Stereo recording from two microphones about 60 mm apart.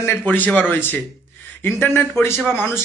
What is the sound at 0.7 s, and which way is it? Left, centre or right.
A man's voice, left.